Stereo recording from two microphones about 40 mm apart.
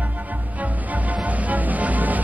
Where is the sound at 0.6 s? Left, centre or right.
Right.